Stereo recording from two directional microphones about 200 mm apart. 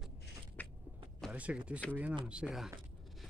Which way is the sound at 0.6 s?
10° left (ahead or behind).